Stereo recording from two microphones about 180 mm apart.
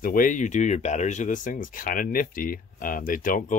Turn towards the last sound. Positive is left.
turn(degrees=45)  # may be behind; listen again after turning